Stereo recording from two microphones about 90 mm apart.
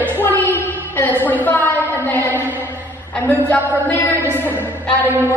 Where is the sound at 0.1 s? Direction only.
20° left (ahead or behind).